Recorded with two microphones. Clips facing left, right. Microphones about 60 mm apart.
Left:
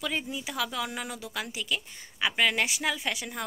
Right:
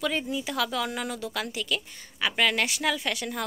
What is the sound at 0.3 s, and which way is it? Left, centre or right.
A woman's voice, centre.